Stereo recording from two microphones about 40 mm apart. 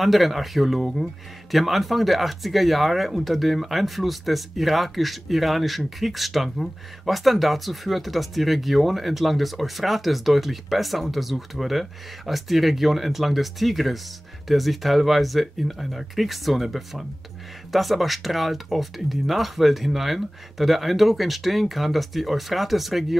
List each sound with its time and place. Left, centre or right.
0.0 s speech: centre